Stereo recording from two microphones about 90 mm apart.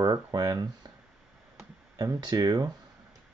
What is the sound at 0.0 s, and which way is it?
Speech, 50° right (ahead or behind).